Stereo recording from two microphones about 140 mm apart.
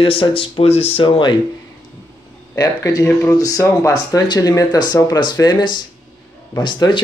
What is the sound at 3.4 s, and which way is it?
Speech, 25° left (ahead or behind).